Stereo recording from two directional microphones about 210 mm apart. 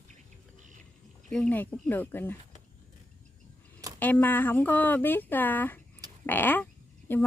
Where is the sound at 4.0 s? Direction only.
10° left (ahead or behind).